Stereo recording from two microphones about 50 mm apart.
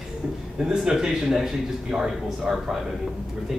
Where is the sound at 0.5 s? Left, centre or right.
Centre.